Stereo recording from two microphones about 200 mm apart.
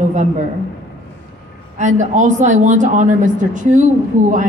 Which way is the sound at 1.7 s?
35° right (ahead or behind).